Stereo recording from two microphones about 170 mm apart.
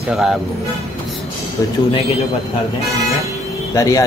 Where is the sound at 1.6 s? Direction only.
20° left (ahead or behind).